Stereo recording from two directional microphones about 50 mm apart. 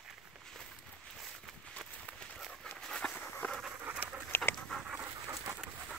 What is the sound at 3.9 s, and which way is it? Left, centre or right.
Dog, right.